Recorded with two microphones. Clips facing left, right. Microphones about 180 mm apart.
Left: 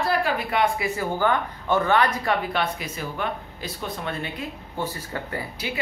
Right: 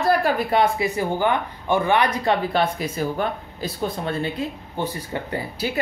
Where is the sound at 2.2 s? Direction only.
35° right (ahead or behind).